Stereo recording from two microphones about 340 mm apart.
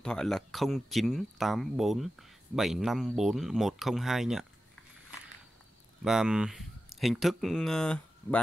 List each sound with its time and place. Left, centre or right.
0.0 s speech: centre
6.0 s speech: centre